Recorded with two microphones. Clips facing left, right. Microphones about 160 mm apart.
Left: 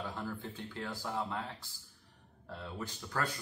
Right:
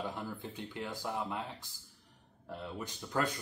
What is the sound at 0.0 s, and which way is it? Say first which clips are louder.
Speech: right 1 dB; 15° right (ahead or behind).